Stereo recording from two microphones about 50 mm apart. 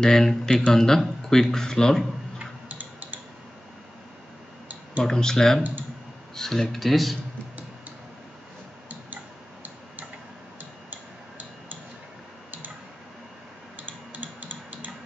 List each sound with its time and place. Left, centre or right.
0.0 s speech: centre
2.3 s tick-tock: right
5.0 s speech: centre
9.1 s tick-tock: right
13.7 s music: right